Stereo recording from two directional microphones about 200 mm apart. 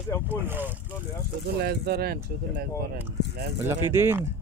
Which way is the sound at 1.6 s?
50° right (ahead or behind).